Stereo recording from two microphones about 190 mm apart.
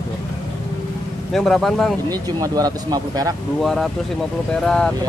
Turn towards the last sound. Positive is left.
turn(degrees=5)  # may be behind; listen again after turning